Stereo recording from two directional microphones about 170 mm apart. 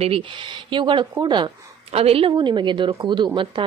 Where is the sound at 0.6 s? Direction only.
30° right (ahead or behind).